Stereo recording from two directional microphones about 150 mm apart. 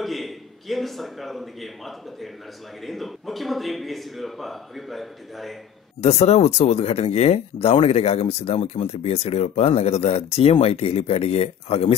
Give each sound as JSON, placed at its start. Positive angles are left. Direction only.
{"t": 0.0, "sound": "a man's voice", "side_deg": 0}
{"t": 5.9, "sound": "speech", "side_deg": 45}